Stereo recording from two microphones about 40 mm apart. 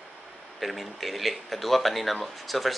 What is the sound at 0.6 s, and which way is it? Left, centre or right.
Speech, centre.